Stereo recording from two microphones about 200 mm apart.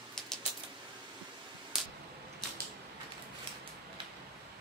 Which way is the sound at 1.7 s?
Centre (ahead or behind).